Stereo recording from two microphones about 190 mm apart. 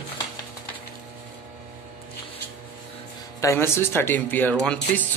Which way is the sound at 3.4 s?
15° left (ahead or behind).